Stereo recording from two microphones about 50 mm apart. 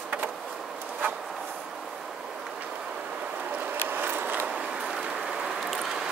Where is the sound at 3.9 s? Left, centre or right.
Right.